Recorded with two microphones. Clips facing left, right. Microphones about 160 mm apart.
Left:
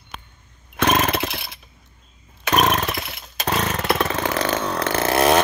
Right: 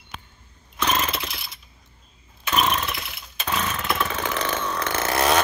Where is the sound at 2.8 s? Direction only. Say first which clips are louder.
Left 5 dB; 45° left (ahead or behind).